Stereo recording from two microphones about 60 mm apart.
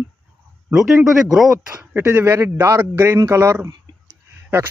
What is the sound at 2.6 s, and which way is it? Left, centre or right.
Speech, right.